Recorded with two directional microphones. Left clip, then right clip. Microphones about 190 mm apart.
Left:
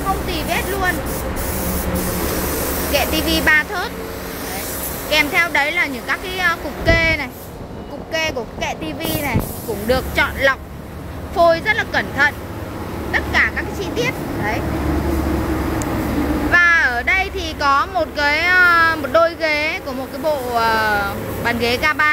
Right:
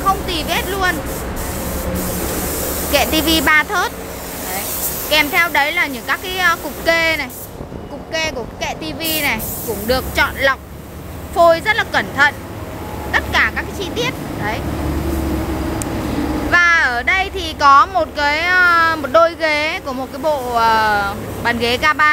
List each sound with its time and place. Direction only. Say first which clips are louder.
0.3 s a sound: right 2 dB; 10° right (ahead or behind)
2.9 s speech: right 4 dB; 20° right (ahead or behind)
5.1 s speech: right 2 dB; 10° right (ahead or behind)
16.5 s speech: right 1 dB; 5° right (ahead or behind)